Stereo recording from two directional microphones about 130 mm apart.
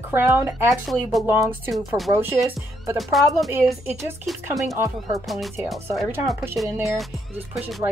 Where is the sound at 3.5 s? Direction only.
15° right (ahead or behind).